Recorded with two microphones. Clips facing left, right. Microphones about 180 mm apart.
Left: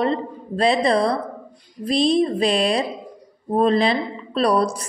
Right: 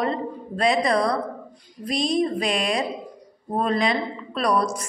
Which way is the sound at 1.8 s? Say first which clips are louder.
Left 5 dB; 30° left (ahead or behind).